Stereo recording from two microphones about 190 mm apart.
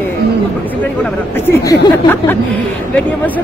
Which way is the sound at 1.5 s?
15° left (ahead or behind).